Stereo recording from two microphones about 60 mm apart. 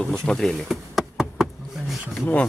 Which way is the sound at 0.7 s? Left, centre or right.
Centre.